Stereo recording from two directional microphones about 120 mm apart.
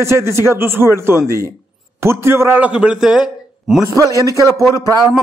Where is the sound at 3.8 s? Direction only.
25° right (ahead or behind).